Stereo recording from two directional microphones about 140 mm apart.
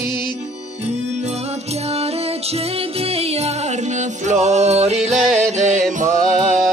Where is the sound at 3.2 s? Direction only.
50° right (ahead or behind).